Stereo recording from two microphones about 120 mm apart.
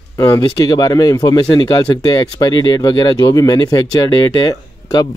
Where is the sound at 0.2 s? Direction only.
30° left (ahead or behind).